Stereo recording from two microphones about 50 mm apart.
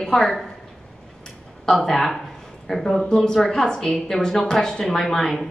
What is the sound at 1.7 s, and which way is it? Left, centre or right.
A woman's voice, centre.